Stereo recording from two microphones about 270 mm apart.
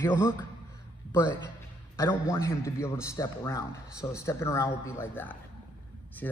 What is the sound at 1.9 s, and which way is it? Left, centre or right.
A man's voice, centre.